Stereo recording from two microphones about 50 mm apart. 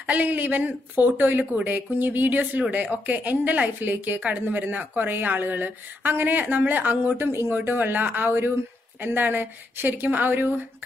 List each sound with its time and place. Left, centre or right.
0.0 s a woman's voice: right